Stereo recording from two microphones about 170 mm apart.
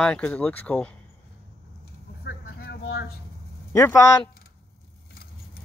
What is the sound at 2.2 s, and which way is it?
Vehicle, 65° left (ahead or behind).